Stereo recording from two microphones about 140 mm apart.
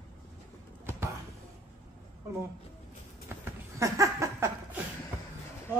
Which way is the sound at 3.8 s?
20° right (ahead or behind).